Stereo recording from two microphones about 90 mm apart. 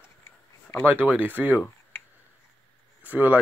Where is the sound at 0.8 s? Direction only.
20° right (ahead or behind).